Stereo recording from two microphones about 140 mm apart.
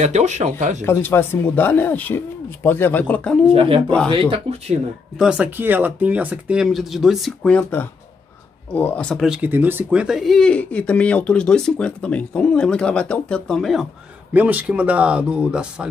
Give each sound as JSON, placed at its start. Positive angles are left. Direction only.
{"t": 0.0, "sound": "speech", "side_deg": -55}
{"t": 0.8, "sound": "speech", "side_deg": 15}
{"t": 3.5, "sound": "speech", "side_deg": -40}
{"t": 5.2, "sound": "speech", "side_deg": -10}
{"t": 9.2, "sound": "speech", "side_deg": -10}
{"t": 14.3, "sound": "speech", "side_deg": -10}